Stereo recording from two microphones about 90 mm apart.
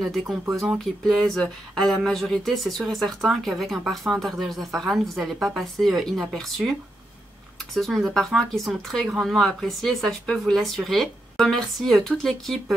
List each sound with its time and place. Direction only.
0.0 s speech: centre (ahead or behind)
7.7 s speech: centre (ahead or behind)